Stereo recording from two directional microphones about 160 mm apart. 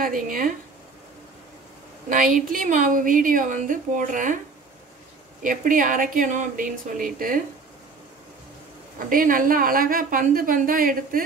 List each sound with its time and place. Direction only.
0.0 s a woman's voice: 60° right (ahead or behind)
2.0 s a woman's voice: 55° right (ahead or behind)
5.4 s a woman's voice: 55° right (ahead or behind)
9.1 s a woman's voice: 60° right (ahead or behind)